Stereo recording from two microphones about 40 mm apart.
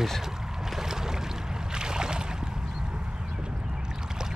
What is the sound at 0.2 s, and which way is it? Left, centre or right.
Boat, centre.